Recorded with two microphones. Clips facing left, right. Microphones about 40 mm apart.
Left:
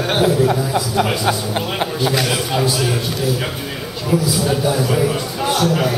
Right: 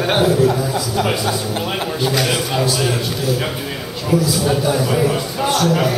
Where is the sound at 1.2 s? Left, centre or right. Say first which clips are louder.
Left 1 dB; left.